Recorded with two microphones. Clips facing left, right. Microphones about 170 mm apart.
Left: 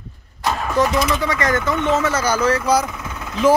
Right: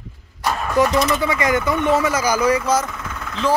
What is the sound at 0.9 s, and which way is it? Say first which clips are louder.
Speech: right 1 dB; centre (ahead or behind).